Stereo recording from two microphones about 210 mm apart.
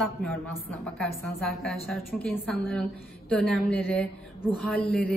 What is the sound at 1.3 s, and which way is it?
A woman's voice, centre (ahead or behind).